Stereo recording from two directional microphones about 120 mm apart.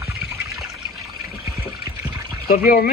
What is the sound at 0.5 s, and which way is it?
Trickle, centre (ahead or behind).